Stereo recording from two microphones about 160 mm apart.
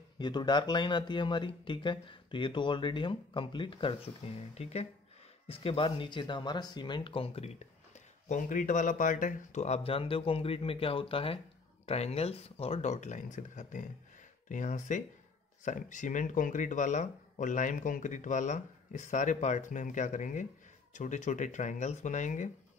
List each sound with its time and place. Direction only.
0.2 s speech: 25° left (ahead or behind); by 22.5 s 50° left (ahead or behind)